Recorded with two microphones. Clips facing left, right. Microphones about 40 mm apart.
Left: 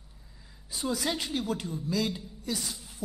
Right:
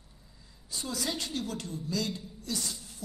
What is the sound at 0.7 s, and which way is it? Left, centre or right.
A woman's voice, centre.